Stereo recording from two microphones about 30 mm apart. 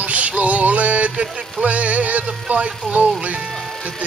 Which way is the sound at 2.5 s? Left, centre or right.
Right.